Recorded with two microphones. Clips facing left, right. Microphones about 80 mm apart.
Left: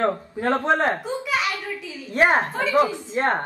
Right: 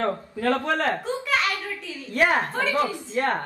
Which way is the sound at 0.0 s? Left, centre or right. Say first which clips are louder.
Left 2 dB; left.